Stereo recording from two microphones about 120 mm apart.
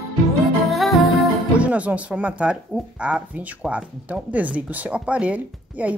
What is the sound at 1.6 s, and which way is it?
A woman's voice, 10° right (ahead or behind).